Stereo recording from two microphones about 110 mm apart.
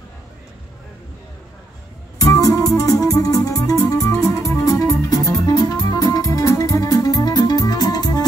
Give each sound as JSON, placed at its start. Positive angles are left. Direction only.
{"t": 2.1, "sound": "music", "side_deg": 30}